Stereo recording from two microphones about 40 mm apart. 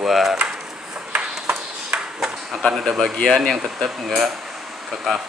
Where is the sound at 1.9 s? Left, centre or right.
Centre.